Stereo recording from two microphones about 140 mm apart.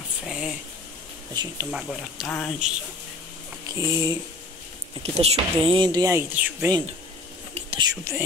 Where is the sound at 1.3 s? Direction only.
30° right (ahead or behind).